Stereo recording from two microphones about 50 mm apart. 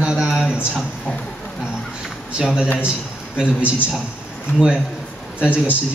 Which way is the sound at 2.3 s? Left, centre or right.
Centre.